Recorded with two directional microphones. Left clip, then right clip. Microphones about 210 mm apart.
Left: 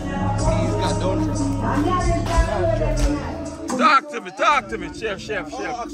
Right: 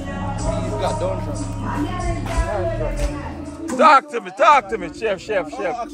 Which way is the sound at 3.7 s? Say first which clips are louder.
Right 4 dB; 10° right (ahead or behind).